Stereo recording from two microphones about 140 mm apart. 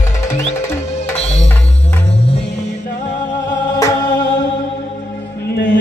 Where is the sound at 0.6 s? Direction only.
15° left (ahead or behind).